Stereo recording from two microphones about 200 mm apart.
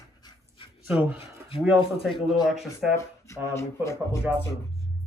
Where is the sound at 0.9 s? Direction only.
5° right (ahead or behind).